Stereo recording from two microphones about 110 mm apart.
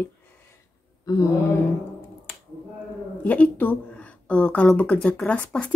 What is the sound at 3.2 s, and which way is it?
A woman's voice, 15° left (ahead or behind).